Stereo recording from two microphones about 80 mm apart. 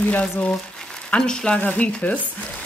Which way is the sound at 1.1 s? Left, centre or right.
Centre.